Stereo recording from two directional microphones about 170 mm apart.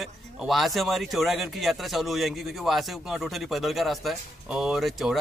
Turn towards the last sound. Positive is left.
turn(degrees=0)  # may be behind; listen again after turning